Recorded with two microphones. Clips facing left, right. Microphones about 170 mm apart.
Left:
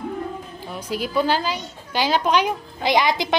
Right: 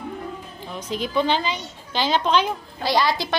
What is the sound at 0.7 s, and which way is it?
A woman's voice, 10° left (ahead or behind).